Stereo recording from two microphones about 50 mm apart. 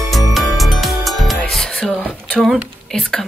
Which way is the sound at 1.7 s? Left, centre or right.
Centre.